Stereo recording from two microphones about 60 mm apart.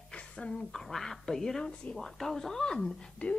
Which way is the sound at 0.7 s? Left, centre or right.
Centre.